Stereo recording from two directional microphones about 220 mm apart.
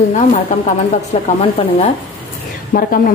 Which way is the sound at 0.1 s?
35° left (ahead or behind).